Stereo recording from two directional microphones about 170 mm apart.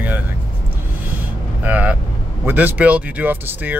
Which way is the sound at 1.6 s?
10° right (ahead or behind).